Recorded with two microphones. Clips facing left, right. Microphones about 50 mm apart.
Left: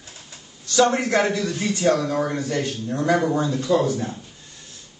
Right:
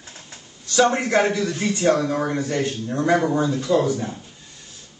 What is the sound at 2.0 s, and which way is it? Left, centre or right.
A man's voice, centre.